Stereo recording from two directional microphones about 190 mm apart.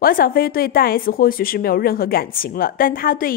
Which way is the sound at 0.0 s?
50° left (ahead or behind).